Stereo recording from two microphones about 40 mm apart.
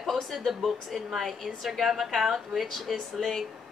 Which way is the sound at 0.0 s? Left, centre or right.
Centre.